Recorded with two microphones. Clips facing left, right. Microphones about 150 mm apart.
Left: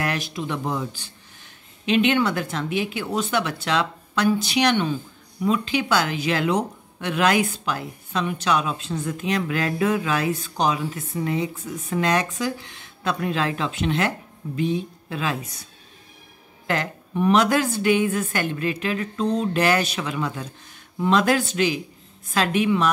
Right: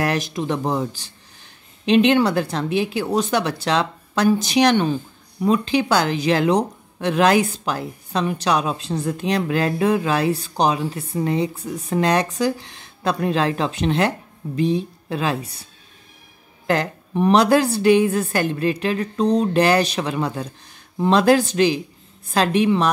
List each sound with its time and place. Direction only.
0.0 s speech: 40° right (ahead or behind)
16.6 s speech: 35° right (ahead or behind)